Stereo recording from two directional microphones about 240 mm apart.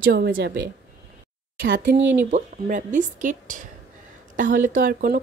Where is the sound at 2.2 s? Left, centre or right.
Right.